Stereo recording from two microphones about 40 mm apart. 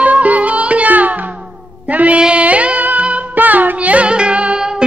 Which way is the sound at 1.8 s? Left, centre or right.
Right.